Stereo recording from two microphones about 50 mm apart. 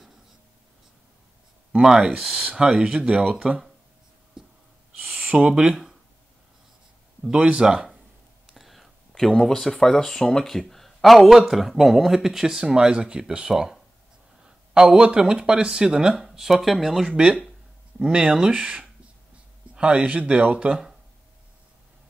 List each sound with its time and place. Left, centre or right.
1.8 s speech: centre
4.4 s writing: centre
5.2 s a sound: right
5.5 s speech: centre
7.3 s speech: right
8.5 s speech: centre
17.2 s speech: centre